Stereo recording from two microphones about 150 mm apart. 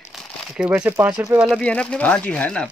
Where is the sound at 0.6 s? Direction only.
10° right (ahead or behind).